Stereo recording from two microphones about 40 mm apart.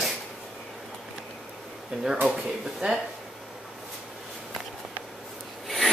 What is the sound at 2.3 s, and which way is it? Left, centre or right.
Speech, right.